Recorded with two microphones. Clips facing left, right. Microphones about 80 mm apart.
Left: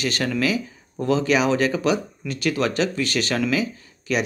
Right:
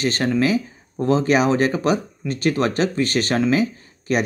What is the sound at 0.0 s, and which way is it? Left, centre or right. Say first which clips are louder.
Speech: right 4 dB; right.